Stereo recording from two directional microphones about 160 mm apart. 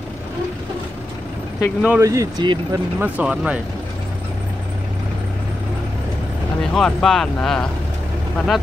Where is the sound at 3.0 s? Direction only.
10° right (ahead or behind).